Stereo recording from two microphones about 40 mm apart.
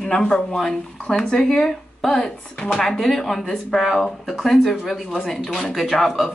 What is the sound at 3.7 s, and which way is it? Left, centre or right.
Speech, centre.